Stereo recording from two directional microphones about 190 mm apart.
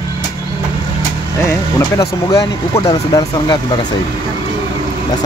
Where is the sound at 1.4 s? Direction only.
15° left (ahead or behind).